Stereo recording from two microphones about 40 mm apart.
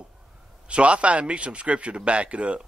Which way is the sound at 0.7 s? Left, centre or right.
Right.